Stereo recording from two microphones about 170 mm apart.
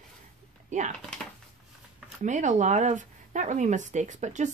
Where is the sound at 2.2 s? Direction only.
45° right (ahead or behind).